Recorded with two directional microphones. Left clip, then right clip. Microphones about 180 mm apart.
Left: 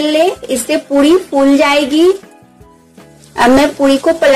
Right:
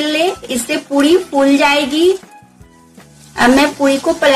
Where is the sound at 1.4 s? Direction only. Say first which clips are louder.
Left 3 dB; 25° left (ahead or behind).